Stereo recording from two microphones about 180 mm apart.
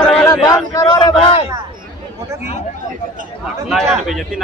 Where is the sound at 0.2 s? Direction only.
20° left (ahead or behind).